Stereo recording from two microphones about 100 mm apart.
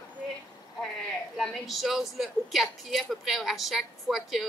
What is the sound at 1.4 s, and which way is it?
A woman's voice, centre (ahead or behind).